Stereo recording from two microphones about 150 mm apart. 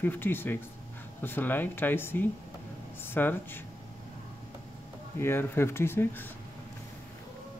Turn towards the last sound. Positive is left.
turn(degrees=15)  # may be behind; listen again after turning